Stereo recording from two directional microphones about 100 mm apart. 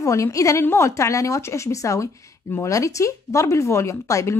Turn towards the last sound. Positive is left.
turn(degrees=30)  # may be behind; listen again after turning